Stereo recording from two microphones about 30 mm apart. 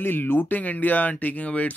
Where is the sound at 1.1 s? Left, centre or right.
Left.